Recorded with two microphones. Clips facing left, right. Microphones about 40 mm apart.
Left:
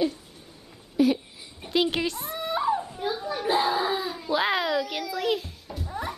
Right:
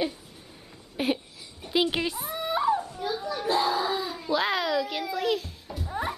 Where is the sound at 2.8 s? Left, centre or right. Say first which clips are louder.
Left 1 dB; centre.